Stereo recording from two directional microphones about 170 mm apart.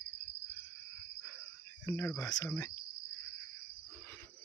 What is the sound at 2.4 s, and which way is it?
Cricket, 15° left (ahead or behind).